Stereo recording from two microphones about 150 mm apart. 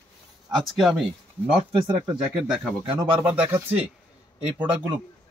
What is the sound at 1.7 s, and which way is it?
Speech, 25° right (ahead or behind).